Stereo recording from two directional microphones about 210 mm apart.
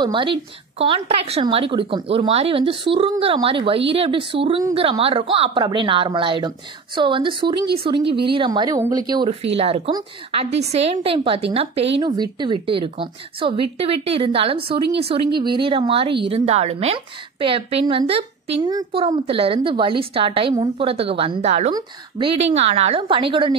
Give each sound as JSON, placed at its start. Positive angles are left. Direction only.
{"t": 0.0, "sound": "a woman's voice", "side_deg": -25}